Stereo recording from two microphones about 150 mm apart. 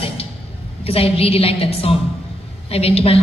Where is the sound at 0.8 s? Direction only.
40° left (ahead or behind).